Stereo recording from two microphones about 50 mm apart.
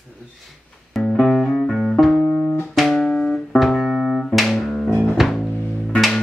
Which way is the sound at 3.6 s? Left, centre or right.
Centre.